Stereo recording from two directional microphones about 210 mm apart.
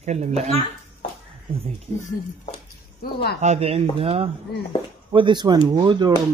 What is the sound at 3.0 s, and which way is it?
Speech, 50° left (ahead or behind).